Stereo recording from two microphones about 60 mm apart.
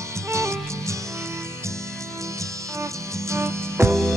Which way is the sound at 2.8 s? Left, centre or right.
Right.